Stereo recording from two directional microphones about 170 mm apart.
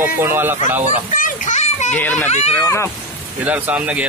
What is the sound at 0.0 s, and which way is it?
Speech, 10° right (ahead or behind).